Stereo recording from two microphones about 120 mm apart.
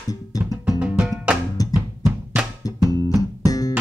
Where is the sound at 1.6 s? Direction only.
30° left (ahead or behind).